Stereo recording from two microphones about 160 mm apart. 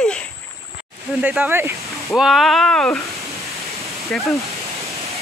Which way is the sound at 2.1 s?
Centre (ahead or behind).